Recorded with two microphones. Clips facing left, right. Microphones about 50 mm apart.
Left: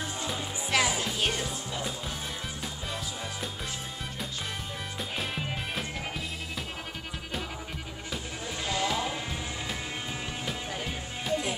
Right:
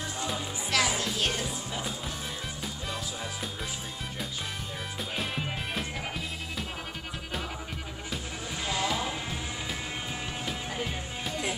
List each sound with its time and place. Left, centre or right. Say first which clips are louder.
0.7 s music: left 1 dB; centre
8.6 s vehicle: left 1 dB; centre
10.4 s music: right 2 dB; centre